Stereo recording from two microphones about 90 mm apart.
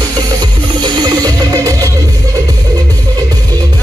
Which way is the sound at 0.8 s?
55° right (ahead or behind).